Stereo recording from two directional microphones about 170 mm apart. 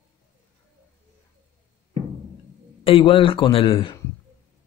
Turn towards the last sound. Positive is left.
turn(degrees=30)  # may be behind; listen again after turning